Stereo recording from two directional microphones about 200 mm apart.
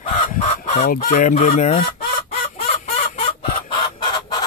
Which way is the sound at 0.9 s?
45° left (ahead or behind).